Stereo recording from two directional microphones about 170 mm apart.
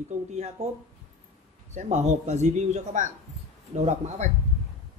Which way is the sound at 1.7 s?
45° right (ahead or behind).